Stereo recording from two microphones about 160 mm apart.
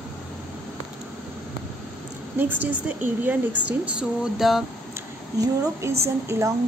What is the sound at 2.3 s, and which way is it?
Speech, 10° right (ahead or behind).